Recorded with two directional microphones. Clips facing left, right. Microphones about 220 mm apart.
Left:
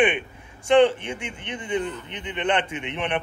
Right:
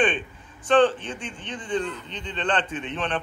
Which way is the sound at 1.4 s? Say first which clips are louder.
Even; 20° left (ahead or behind).